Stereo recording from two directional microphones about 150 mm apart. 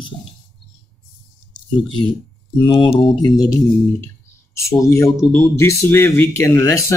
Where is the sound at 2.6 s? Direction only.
35° left (ahead or behind).